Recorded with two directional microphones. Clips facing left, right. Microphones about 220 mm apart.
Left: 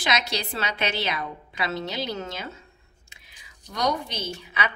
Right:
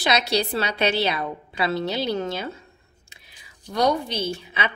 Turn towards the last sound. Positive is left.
turn(degrees=-30)  # may be behind; listen again after turning